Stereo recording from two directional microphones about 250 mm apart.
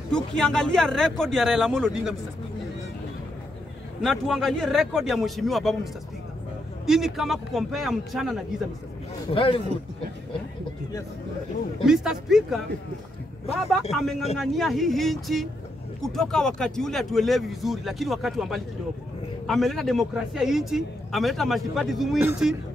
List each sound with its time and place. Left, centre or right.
0.1 s a man's voice: centre
4.0 s a man's voice: centre
6.9 s a man's voice: centre
9.3 s a man's voice: left
11.8 s a man's voice: centre
14.3 s a man's voice: centre